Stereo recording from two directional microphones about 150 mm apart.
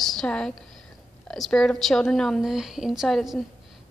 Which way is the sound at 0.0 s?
Centre (ahead or behind).